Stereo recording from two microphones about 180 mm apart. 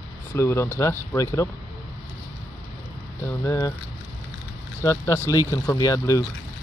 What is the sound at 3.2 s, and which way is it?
Speech, 15° left (ahead or behind).